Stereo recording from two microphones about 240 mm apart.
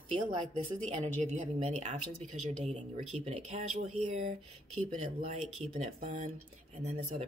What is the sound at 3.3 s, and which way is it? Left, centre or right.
Speech, right.